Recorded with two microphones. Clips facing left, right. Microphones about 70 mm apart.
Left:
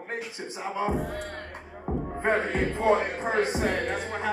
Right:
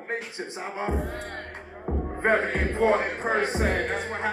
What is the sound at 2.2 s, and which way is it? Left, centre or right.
Music, right.